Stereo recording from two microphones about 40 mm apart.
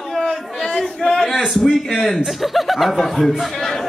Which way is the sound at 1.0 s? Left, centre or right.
Centre.